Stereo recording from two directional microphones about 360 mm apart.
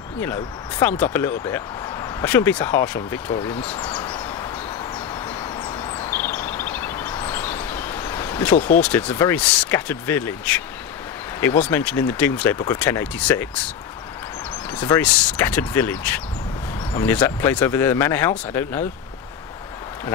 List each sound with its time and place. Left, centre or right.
0.2 s speech: centre
3.3 s speech: centre
3.6 s a sound: centre
11.4 s speech: centre
14.7 s speech: centre